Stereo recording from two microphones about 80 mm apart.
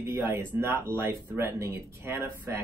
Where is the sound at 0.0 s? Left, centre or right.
Right.